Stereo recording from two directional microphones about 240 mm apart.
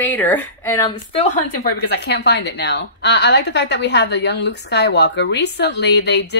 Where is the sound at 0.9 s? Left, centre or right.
Left.